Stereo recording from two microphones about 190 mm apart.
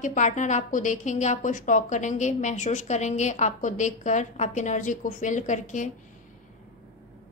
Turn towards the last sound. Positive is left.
turn(degrees=40)  # may be behind; listen again after turning